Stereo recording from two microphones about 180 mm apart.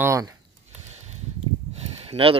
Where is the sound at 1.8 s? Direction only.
30° right (ahead or behind).